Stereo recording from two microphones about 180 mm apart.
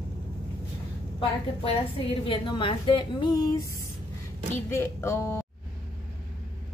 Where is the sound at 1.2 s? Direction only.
30° left (ahead or behind).